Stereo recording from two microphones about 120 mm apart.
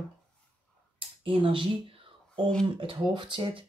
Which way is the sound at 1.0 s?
50° right (ahead or behind).